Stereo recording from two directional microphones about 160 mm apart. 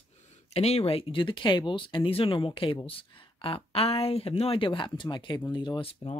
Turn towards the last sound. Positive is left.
turn(degrees=35)  # may be behind; listen again after turning